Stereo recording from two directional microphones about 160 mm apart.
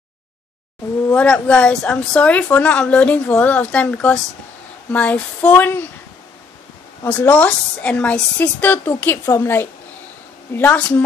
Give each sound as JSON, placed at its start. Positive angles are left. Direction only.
{"t": 1.0, "sound": "a woman's voice", "side_deg": 5}
{"t": 7.1, "sound": "a woman's voice", "side_deg": 10}